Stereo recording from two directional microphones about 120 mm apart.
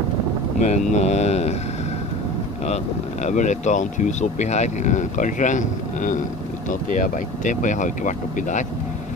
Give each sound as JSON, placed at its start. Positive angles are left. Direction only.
{"t": 0.6, "sound": "speech", "side_deg": 80}
{"t": 3.3, "sound": "speech", "side_deg": 80}
{"t": 7.4, "sound": "speech", "side_deg": 90}